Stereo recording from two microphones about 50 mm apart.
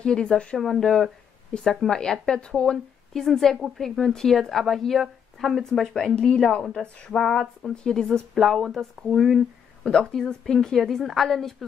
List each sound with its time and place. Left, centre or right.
0.0 s a woman's voice: centre
0.6 s a woman's voice: centre
6.1 s a woman's voice: centre
7.1 s a woman's voice: centre
8.4 s speech: centre
9.8 s a woman's voice: centre